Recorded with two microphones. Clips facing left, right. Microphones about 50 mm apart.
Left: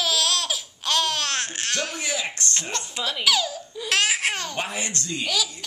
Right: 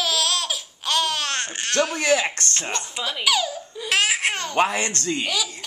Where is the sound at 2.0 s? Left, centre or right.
Right.